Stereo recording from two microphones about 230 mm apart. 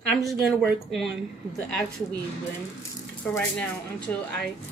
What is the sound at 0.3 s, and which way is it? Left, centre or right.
Speech, centre.